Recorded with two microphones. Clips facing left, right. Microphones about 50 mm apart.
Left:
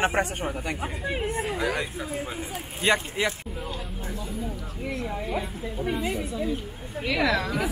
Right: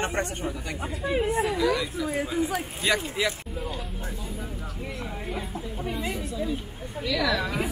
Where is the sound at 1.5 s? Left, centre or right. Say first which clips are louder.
Right 3 dB; left.